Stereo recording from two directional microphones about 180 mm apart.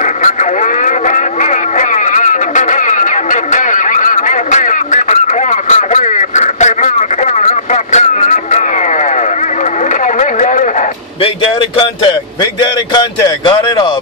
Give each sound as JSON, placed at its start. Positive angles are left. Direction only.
{"t": 0.0, "sound": "radio", "side_deg": 40}
{"t": 10.1, "sound": "a sound", "side_deg": 45}
{"t": 13.5, "sound": "speech", "side_deg": 25}